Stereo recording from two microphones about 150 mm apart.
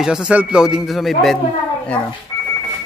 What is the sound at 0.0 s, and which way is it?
Speech, 5° right (ahead or behind).